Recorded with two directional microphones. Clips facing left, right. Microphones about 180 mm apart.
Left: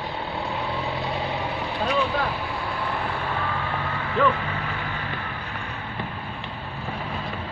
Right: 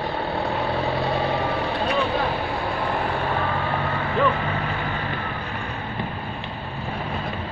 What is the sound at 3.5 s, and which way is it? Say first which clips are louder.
Reversing beeps: right 4 dB; 40° right (ahead or behind).